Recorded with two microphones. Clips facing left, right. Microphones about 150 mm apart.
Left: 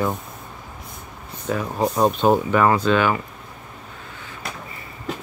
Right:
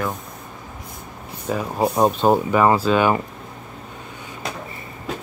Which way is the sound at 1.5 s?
10° right (ahead or behind).